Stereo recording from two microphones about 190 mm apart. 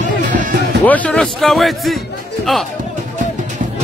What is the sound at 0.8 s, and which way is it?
Speech, 10° left (ahead or behind).